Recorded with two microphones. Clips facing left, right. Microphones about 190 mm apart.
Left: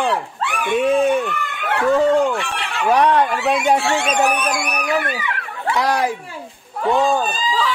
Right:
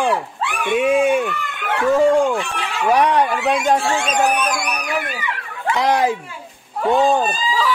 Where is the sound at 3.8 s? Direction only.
70° left (ahead or behind).